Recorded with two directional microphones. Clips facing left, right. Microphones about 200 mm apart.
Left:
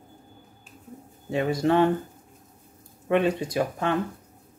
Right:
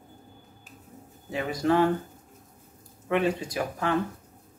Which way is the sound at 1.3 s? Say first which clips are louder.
Left 2 dB; 25° left (ahead or behind).